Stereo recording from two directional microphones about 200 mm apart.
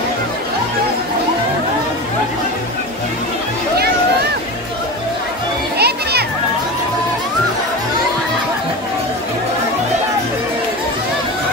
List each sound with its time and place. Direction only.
5.8 s children playing: 55° right (ahead or behind)